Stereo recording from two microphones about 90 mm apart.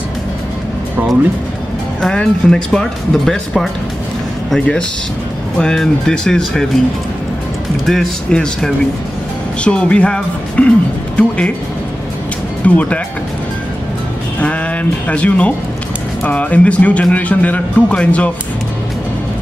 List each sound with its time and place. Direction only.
2.0 s speech: 5° left (ahead or behind)
7.8 s speech: centre (ahead or behind)
12.6 s speech: 15° left (ahead or behind)
14.4 s speech: 15° left (ahead or behind)